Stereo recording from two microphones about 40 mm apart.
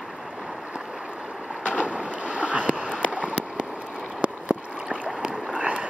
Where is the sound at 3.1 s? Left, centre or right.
Right.